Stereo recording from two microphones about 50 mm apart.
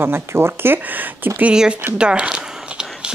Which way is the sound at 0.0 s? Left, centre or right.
Right.